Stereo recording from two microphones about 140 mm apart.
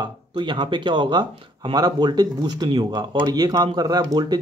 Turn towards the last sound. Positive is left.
turn(degrees=-30)  # may be behind; listen again after turning